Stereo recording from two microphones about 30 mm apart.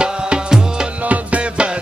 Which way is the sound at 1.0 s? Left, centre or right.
Right.